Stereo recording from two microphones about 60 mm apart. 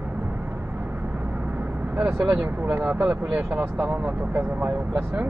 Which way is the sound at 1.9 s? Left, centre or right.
Centre.